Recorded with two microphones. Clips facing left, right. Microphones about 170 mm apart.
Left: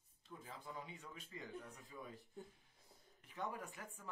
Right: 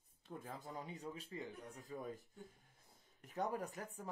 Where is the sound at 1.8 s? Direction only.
45° right (ahead or behind).